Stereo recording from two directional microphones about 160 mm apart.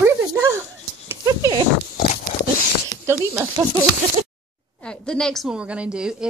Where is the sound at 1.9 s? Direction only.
70° left (ahead or behind).